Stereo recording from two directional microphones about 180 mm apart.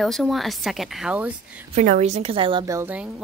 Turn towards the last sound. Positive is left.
turn(degrees=-10)  # may be behind; listen again after turning